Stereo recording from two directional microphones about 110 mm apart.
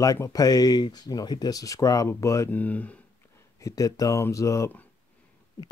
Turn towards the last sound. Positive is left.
turn(degrees=25)  # may be behind; listen again after turning